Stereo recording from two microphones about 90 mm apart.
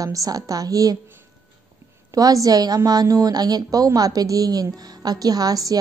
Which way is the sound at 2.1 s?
40° right (ahead or behind).